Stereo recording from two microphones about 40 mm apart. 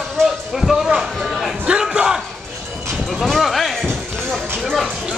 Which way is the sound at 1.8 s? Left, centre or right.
Centre.